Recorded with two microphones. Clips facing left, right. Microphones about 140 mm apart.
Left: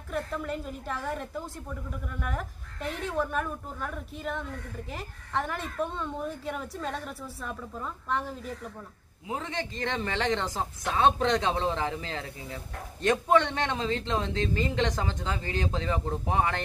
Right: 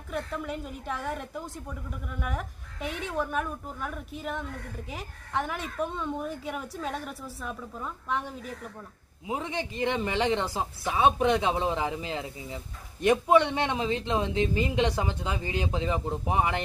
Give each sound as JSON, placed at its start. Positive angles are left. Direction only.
{"t": 0.1, "sound": "a woman's voice", "side_deg": 0}
{"t": 9.3, "sound": "a man's voice", "side_deg": -15}